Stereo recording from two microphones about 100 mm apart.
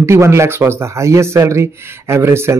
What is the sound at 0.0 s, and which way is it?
Speech, 25° right (ahead or behind).